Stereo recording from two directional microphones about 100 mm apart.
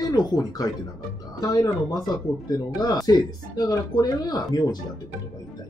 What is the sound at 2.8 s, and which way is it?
Speech, 40° left (ahead or behind).